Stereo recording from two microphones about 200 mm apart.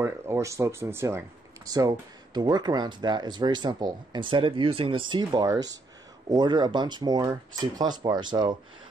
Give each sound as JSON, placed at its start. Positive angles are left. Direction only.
{"t": 0.0, "sound": "speech", "side_deg": -15}